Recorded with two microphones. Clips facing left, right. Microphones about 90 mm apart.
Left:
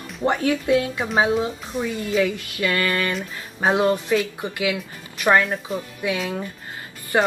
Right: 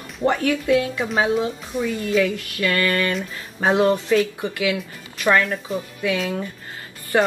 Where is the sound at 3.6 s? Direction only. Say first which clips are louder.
Right 1 dB; 15° left (ahead or behind).